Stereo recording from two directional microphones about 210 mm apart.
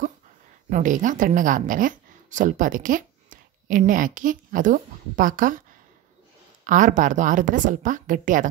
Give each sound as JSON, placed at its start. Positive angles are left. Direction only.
{"t": 0.7, "sound": "a woman's voice", "side_deg": -35}
{"t": 6.6, "sound": "a woman's voice", "side_deg": -35}